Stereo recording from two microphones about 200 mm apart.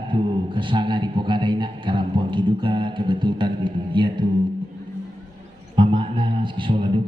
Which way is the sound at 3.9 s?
25° right (ahead or behind).